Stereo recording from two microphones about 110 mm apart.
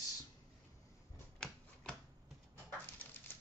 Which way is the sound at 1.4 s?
5° left (ahead or behind).